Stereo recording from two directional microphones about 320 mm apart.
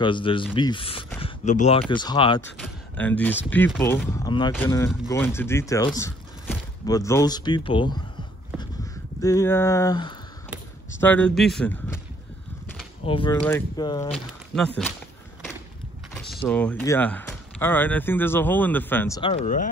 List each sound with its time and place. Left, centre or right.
0.0 s speech: centre
2.6 s speech: centre
9.2 s speech: centre
13.0 s speech: centre
14.1 s speech: centre
16.4 s speech: centre; by 19.7 s left